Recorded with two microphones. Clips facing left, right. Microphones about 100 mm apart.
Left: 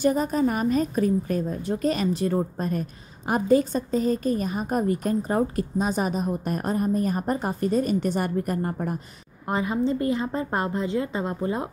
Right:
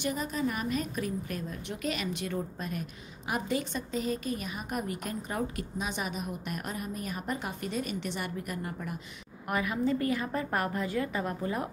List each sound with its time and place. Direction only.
0.0 s a woman's voice: 40° left (ahead or behind)
9.5 s a woman's voice: 30° left (ahead or behind)